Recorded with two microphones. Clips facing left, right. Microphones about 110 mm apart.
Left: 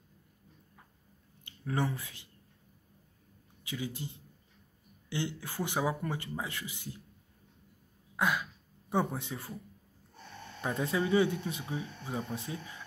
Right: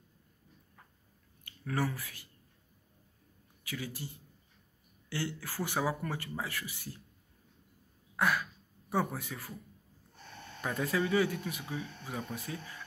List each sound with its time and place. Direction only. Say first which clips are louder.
1.4 s speech: left 1 dB; 20° left (ahead or behind)
3.6 s speech: left 2 dB; 20° left (ahead or behind)
8.2 s throat clearing: even; 20° left (ahead or behind)
8.9 s speech: left 1 dB; 25° left (ahead or behind)
10.6 s speech: left 1 dB; 25° left (ahead or behind)